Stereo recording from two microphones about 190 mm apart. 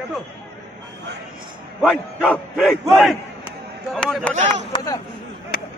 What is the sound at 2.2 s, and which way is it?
Speech, centre (ahead or behind).